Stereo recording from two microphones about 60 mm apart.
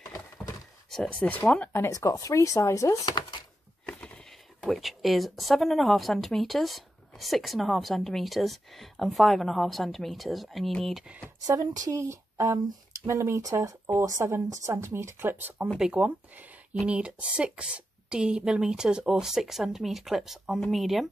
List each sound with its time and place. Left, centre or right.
0.8 s a sound: centre
1.2 s speech: left
1.9 s speech: left
3.8 s a sound: centre
4.6 s speech: centre
11.4 s speech: right
13.1 s speech: right
13.5 s speech: right
15.2 s speech: right
15.8 s speech: centre